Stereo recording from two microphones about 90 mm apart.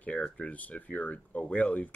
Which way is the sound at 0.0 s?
15° left (ahead or behind).